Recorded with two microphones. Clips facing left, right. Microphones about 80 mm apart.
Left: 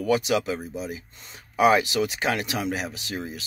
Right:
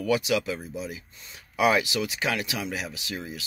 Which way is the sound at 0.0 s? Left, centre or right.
Left.